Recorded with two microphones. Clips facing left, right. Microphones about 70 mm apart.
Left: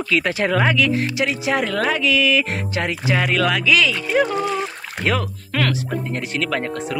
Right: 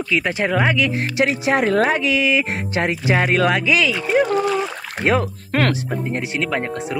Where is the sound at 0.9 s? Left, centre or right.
Right.